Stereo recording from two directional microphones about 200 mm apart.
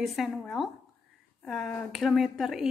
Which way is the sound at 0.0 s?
Centre (ahead or behind).